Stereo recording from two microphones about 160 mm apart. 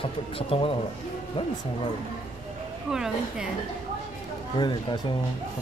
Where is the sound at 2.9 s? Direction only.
5° right (ahead or behind).